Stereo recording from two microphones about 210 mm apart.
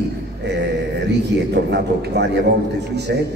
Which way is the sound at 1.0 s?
55° right (ahead or behind).